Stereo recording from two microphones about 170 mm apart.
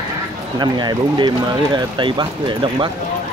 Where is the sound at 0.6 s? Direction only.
25° right (ahead or behind).